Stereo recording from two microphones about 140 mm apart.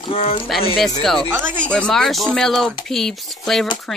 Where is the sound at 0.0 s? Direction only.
45° left (ahead or behind).